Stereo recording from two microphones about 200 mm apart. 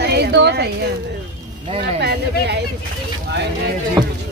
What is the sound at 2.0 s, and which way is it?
Speech, 55° right (ahead or behind).